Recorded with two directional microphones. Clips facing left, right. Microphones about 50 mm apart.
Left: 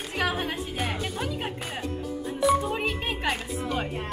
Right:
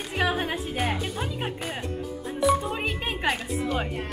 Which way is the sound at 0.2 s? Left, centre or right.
Centre.